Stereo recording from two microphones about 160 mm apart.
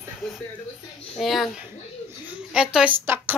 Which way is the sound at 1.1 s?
Centre (ahead or behind).